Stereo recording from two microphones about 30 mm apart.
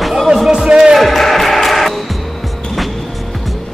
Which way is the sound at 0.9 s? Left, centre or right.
Centre.